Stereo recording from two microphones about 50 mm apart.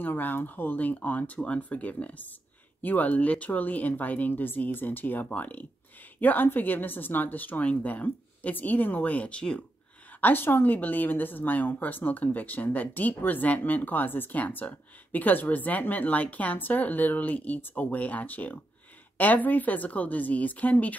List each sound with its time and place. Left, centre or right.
0.0 s a woman's voice: left
10.2 s a woman's voice: left